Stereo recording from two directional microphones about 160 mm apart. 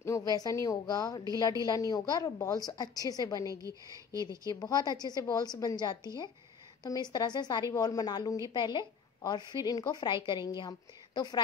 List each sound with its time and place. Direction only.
0.0 s a sound: 20° left (ahead or behind)
0.4 s a woman's voice: 20° left (ahead or behind)
3.6 s speech: 20° right (ahead or behind)
4.5 s a woman's voice: 25° left (ahead or behind)